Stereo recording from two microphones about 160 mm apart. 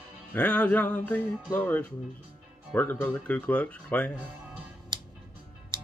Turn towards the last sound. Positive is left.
turn(degrees=-30)  # may be behind; listen again after turning